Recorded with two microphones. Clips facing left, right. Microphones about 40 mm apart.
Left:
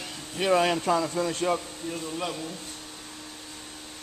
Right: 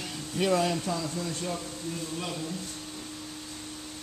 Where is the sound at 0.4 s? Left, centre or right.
Left.